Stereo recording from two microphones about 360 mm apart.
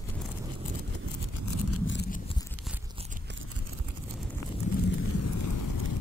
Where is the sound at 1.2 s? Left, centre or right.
Left.